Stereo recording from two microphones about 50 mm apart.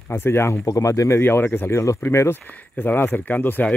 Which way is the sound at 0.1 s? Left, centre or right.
Left.